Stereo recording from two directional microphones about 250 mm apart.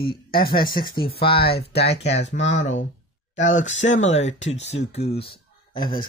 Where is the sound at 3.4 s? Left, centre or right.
Left.